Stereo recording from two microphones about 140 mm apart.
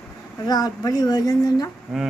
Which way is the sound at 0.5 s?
25° left (ahead or behind).